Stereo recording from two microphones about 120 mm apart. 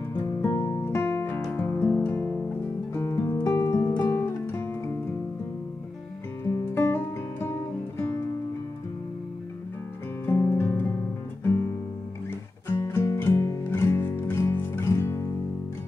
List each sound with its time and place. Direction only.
0.1 s music: 20° left (ahead or behind)
6.4 s music: 20° left (ahead or behind)
10.2 s guitar: 20° left (ahead or behind)
12.6 s music: 20° left (ahead or behind)